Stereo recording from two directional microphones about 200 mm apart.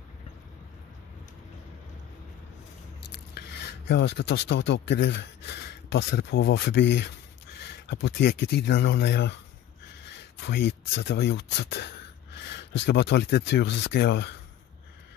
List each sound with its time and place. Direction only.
3.3 s speech: 55° left (ahead or behind)